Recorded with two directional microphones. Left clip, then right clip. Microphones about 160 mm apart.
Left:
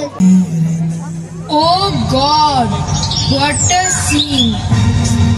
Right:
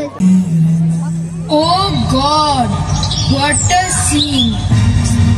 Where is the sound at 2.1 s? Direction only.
20° right (ahead or behind).